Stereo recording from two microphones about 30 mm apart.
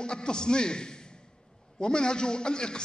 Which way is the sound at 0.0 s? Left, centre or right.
Left.